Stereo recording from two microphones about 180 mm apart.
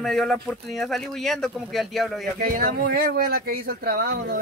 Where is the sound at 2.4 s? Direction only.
50° right (ahead or behind).